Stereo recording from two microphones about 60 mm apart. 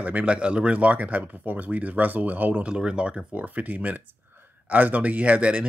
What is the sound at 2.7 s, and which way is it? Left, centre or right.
Speech, centre.